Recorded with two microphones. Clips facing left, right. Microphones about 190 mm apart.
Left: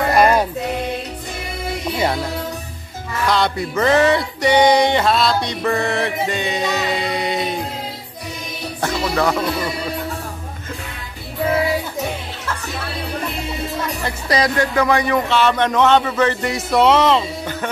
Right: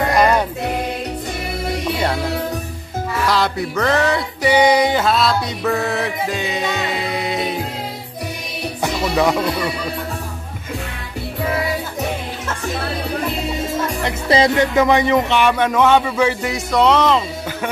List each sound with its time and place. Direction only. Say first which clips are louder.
0.1 s music: left 2 dB; 5° left (ahead or behind)
3.3 s music: left 2 dB; centre (ahead or behind)
8.8 s speech: right 1 dB; 15° right (ahead or behind)
14.0 s speech: right 4 dB; 20° right (ahead or behind)
16.5 s music: left 1 dB; 5° left (ahead or behind)